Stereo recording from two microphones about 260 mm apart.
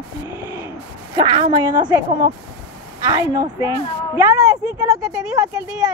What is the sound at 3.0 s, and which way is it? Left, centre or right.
A woman's voice, centre.